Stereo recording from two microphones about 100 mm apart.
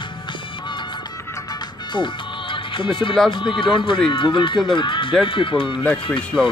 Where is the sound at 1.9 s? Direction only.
55° left (ahead or behind).